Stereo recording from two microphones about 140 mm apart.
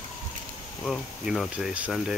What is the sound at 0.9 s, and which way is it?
Speech, centre (ahead or behind).